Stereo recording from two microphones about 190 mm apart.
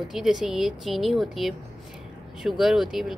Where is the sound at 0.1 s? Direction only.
Centre (ahead or behind).